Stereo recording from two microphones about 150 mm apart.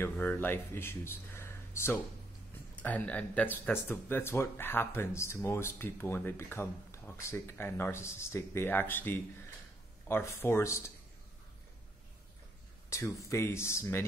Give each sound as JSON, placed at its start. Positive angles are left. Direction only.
{"t": 0.0, "sound": "speech", "side_deg": 15}
{"t": 12.9, "sound": "speech", "side_deg": 20}